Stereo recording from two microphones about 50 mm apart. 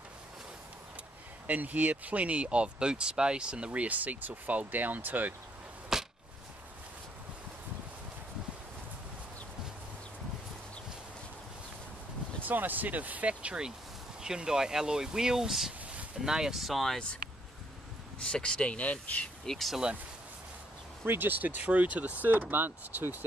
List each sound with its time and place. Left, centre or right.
1.5 s speech: right
5.9 s arrow: centre
12.4 s speech: right; by 17.0 s centre
18.3 s speech: centre
19.4 s speech: centre
21.0 s speech: right